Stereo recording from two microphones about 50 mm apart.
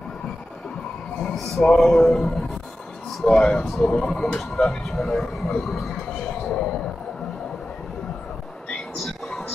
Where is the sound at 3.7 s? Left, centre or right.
Centre.